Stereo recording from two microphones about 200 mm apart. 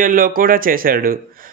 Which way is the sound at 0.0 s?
45° right (ahead or behind).